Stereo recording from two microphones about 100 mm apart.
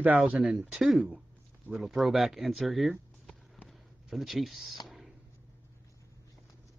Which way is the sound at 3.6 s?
Centre (ahead or behind).